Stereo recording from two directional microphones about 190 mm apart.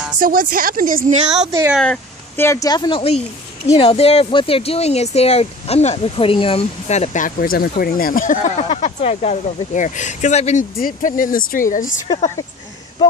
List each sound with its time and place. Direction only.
0.2 s speech: 45° right (ahead or behind)
1.5 s speech: 15° right (ahead or behind)
1.8 s speech: 10° left (ahead or behind); by 11.9 s 45° left (ahead or behind)